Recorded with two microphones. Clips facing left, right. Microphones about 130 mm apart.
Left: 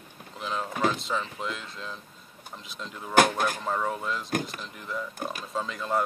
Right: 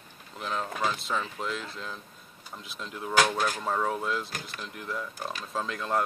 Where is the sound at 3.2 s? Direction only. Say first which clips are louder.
Left 3 dB; 50° left (ahead or behind).